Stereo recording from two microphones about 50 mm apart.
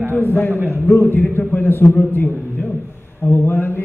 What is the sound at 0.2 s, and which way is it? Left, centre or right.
A man's voice, left.